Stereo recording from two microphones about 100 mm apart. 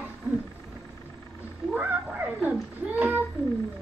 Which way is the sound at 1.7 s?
15° right (ahead or behind).